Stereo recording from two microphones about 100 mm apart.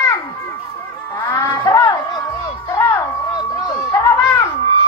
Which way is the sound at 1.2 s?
30° left (ahead or behind).